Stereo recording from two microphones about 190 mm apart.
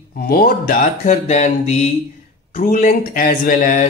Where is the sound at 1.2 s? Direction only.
35° left (ahead or behind).